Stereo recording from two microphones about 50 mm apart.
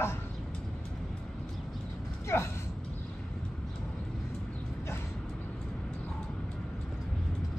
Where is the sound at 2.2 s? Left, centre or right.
Left.